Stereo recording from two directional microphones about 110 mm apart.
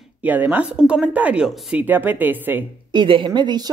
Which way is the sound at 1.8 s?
15° right (ahead or behind).